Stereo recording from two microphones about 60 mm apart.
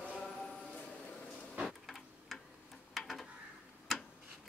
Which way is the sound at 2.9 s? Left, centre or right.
Centre.